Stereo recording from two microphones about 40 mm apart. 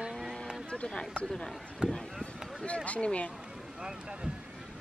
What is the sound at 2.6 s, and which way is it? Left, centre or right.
Speech, left.